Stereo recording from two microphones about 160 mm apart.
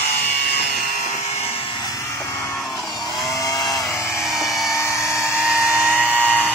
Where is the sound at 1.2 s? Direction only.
40° left (ahead or behind); by 2.5 s 15° left (ahead or behind).